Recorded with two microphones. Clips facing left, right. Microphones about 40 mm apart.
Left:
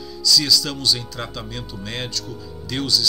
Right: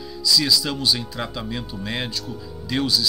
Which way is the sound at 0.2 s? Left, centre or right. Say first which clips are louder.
Left 1 dB; centre.